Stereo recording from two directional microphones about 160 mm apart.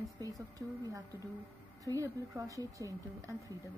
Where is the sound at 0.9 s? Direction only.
20° right (ahead or behind).